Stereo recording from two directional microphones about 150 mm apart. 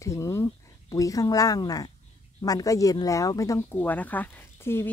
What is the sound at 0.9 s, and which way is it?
Speech, 20° left (ahead or behind).